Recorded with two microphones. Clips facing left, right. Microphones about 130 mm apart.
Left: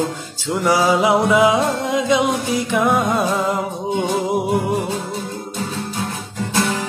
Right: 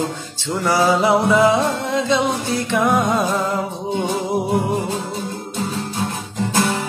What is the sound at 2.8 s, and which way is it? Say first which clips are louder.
Music: right 1 dB; centre (ahead or behind).